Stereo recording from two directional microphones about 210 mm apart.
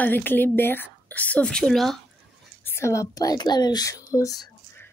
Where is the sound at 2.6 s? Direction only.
10° left (ahead or behind).